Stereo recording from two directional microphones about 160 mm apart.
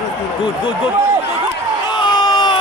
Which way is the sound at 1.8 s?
30° left (ahead or behind).